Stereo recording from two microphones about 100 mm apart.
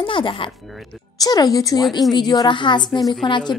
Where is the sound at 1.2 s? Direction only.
40° left (ahead or behind).